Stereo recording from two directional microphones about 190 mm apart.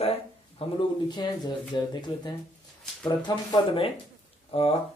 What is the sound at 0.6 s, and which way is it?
Speech, 30° left (ahead or behind).